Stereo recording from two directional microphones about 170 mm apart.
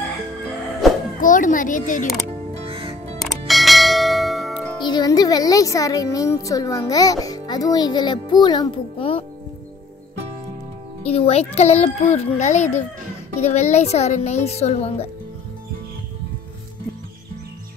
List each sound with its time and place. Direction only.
0.8 s a sound: centre (ahead or behind)
1.2 s speech: 50° left (ahead or behind)
2.6 s music: 30° right (ahead or behind)
3.2 s church bell: centre (ahead or behind)
4.8 s a woman's voice: 25° left (ahead or behind)
11.1 s a child's voice: 35° left (ahead or behind)